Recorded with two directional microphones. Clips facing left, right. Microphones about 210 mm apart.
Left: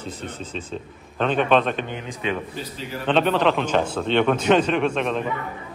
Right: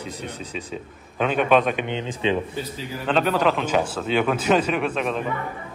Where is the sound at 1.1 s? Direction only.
10° right (ahead or behind).